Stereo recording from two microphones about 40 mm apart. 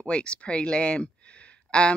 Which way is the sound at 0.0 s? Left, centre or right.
Left.